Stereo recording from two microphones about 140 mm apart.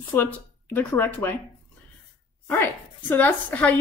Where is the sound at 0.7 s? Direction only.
15° left (ahead or behind).